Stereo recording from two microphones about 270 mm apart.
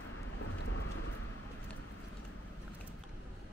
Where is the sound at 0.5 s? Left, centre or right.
Left.